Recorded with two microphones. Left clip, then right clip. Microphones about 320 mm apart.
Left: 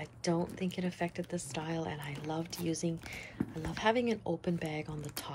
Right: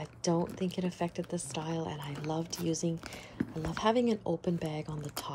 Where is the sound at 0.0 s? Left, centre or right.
Centre.